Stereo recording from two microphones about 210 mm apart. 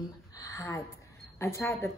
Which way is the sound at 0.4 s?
15° left (ahead or behind).